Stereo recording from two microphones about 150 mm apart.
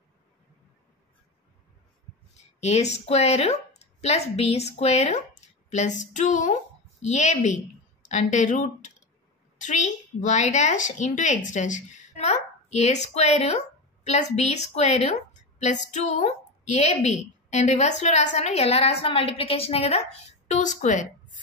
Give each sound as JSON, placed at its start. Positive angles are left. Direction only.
{"t": 2.3, "sound": "a woman's voice", "side_deg": 45}